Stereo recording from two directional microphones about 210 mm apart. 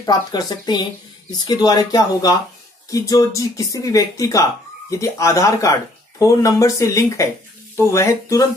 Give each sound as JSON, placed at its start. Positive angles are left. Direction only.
{"t": 0.0, "sound": "speech", "side_deg": 20}